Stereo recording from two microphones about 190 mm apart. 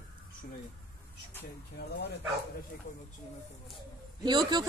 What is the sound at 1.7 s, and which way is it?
Speech, 55° left (ahead or behind).